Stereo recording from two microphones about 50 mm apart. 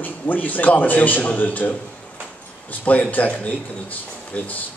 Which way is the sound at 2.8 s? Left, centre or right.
Left.